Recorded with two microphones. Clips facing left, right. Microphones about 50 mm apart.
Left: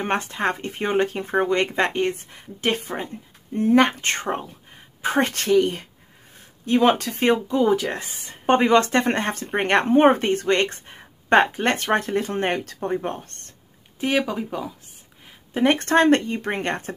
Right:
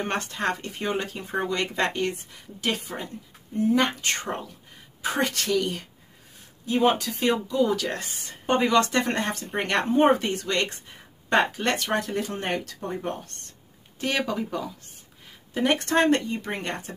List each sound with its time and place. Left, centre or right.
0.0 s speech: centre
3.5 s speech: left
6.6 s speech: left
7.0 s speech: left
8.5 s speech: left
13.9 s speech: centre
15.5 s speech: left